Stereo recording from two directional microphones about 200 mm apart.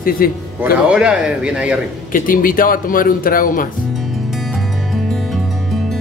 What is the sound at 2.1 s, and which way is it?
A man's voice, 45° left (ahead or behind).